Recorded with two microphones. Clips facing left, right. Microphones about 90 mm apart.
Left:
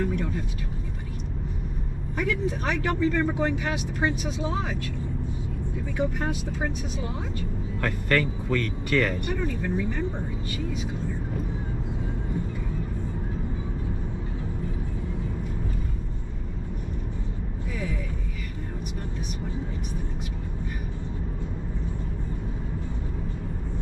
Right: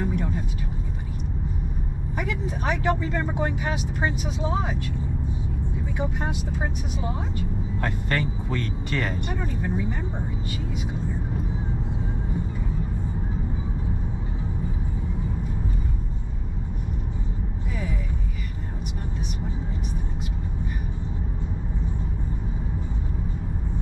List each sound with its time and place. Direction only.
0.0 s vehicle: 15° right (ahead or behind)
2.1 s speech: 15° right (ahead or behind)
5.9 s speech: 15° right (ahead or behind)
7.8 s speech: 20° right (ahead or behind)